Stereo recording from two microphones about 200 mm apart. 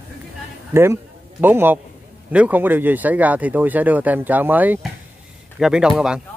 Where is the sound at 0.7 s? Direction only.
15° right (ahead or behind).